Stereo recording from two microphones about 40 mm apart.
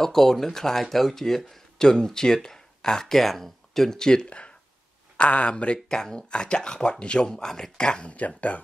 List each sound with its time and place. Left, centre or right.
0.0 s speech: centre
4.3 s a sound: left
5.1 s speech: left
5.9 s speech: centre
8.1 s speech: left